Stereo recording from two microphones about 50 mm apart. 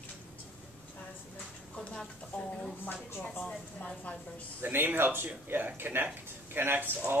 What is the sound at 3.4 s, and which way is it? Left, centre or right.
Speech, centre.